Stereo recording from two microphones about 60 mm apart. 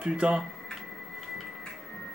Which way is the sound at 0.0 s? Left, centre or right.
Centre.